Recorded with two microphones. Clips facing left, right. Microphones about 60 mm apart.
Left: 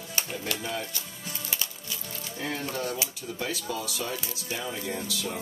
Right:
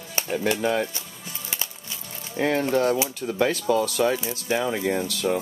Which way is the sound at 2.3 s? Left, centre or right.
Right.